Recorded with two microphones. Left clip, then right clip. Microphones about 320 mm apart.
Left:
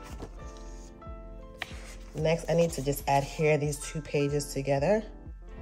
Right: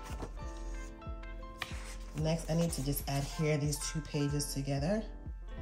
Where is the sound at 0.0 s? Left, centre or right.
Centre.